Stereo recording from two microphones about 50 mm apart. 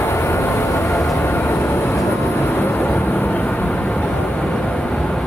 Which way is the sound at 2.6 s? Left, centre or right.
Left.